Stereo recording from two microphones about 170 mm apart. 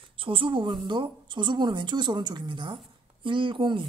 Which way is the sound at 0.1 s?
30° right (ahead or behind).